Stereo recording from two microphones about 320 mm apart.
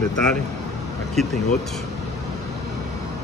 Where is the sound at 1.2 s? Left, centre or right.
Centre.